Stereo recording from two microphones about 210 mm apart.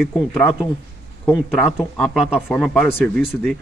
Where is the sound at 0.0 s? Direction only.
Centre (ahead or behind).